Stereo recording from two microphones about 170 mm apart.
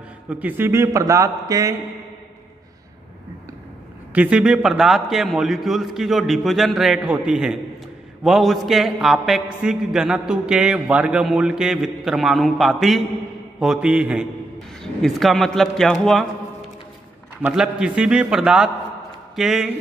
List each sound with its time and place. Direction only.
0.3 s speech: 10° right (ahead or behind)
4.1 s a man's voice: 10° right (ahead or behind)
17.4 s a man's voice: 5° right (ahead or behind)